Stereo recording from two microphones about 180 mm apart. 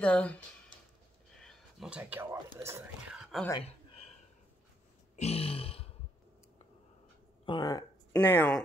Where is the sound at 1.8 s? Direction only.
5° right (ahead or behind).